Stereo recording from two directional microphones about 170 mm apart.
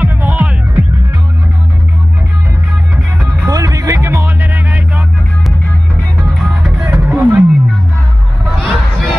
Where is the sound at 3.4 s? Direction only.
20° right (ahead or behind).